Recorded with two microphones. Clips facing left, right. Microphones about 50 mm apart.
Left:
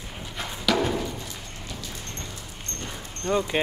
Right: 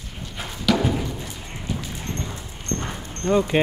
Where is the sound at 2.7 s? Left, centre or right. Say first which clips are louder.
Right 9 dB; right.